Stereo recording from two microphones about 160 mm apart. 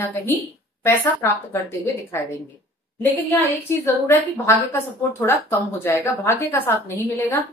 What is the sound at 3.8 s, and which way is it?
A woman's voice, 15° left (ahead or behind).